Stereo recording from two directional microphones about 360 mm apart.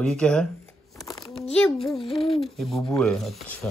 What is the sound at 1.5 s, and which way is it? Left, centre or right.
Speech, centre.